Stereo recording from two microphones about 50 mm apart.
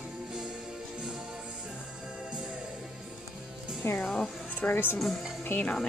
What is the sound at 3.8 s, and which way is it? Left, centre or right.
Speech, left.